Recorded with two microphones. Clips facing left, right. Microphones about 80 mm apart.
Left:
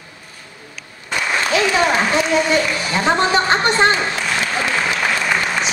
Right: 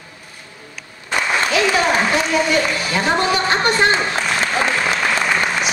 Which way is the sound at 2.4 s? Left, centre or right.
Left.